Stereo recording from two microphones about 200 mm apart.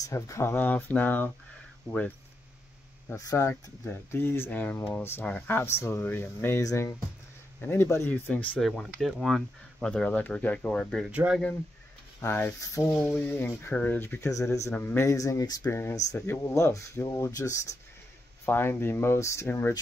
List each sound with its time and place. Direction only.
0.0 s speech: 15° left (ahead or behind); by 11.4 s 5° right (ahead or behind)
12.2 s speech: 10° left (ahead or behind)